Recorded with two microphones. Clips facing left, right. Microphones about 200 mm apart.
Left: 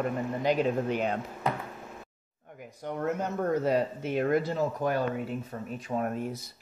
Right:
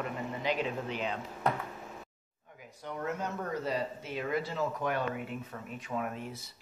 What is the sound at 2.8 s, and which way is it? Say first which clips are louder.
Speech: left 5 dB; 45° left (ahead or behind).